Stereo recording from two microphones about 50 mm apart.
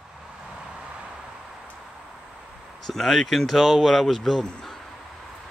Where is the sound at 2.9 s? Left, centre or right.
Centre.